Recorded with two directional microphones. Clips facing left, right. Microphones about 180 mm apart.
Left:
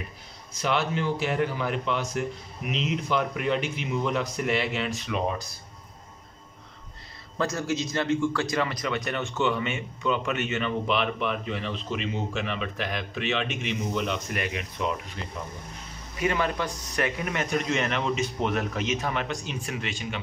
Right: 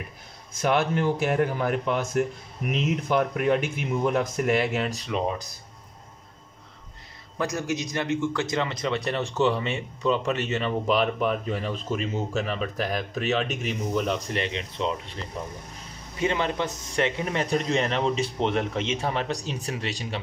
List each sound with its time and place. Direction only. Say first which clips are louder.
0.5 s a man's voice: right 3 dB; 50° right (ahead or behind)
7.3 s a man's voice: even; 15° right (ahead or behind); by 20.2 s 35° right (ahead or behind)